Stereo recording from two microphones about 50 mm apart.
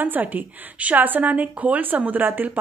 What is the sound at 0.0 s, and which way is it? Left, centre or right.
A woman's voice, right.